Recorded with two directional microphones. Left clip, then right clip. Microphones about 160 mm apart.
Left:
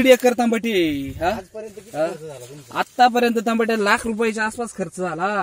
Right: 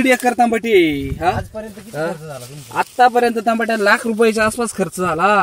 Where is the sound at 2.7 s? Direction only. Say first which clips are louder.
Right 3 dB; 60° left (ahead or behind).